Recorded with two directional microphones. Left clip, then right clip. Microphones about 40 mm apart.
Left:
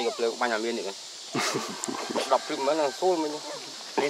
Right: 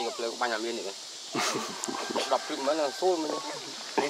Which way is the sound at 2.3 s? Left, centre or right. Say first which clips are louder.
Left 4 dB; left.